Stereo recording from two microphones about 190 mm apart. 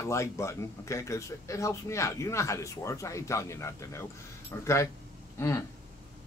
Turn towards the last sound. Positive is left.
turn(degrees=15)  # may be behind; listen again after turning